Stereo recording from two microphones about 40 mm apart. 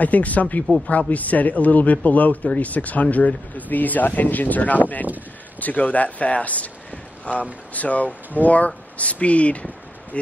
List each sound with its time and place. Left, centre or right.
0.0 s a man's voice: left